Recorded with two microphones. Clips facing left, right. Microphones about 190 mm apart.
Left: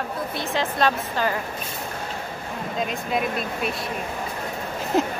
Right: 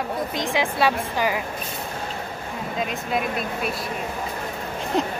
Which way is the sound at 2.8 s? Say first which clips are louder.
Left 1 dB; centre (ahead or behind).